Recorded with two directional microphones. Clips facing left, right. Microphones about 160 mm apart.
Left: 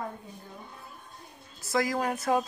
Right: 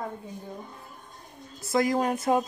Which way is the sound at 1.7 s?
25° right (ahead or behind).